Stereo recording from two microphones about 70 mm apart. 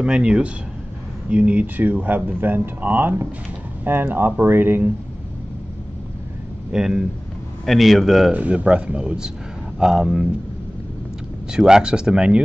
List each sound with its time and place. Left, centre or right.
0.0 s speech: centre; by 4.9 s right
6.7 s speech: centre
8.3 s speech: centre
11.5 s speech: centre